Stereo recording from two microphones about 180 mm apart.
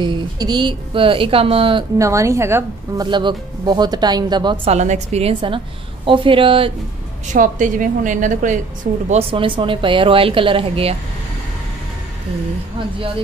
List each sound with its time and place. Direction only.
0.0 s a woman's voice: 25° right (ahead or behind)
2.0 s a woman's voice: 15° right (ahead or behind)
3.1 s a woman's voice: 25° right (ahead or behind)
4.6 s a woman's voice: 40° right (ahead or behind)
7.3 s a woman's voice: 45° right (ahead or behind)
9.1 s a woman's voice: 30° right (ahead or behind)